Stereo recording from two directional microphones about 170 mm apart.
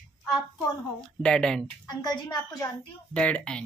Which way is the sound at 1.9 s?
25° left (ahead or behind).